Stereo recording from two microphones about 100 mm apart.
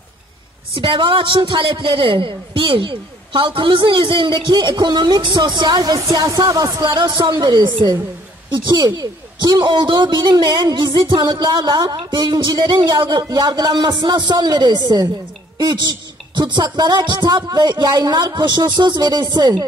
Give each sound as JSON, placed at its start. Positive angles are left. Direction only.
{"t": 0.7, "sound": "a man's voice", "side_deg": -60}